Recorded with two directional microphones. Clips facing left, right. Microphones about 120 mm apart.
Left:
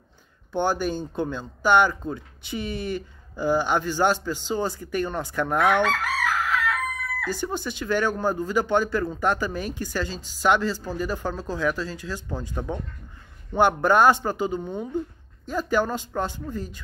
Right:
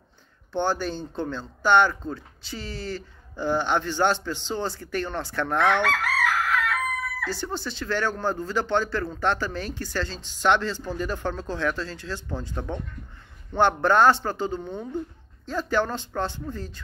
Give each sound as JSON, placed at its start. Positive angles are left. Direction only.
{"t": 0.5, "sound": "speech", "side_deg": 15}
{"t": 5.9, "sound": "chicken", "side_deg": 0}
{"t": 7.2, "sound": "speech", "side_deg": 15}